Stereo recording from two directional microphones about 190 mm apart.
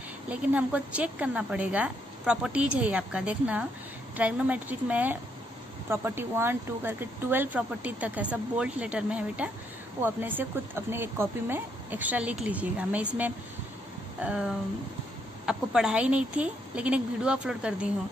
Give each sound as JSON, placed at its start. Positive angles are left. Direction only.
{"t": 0.3, "sound": "a woman's voice", "side_deg": -5}